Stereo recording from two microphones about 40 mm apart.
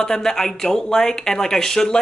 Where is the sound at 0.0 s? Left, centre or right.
Centre.